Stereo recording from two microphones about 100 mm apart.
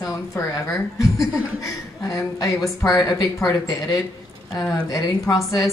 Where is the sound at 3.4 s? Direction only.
35° left (ahead or behind).